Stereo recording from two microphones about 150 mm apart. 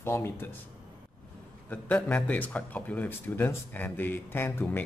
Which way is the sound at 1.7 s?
10° left (ahead or behind).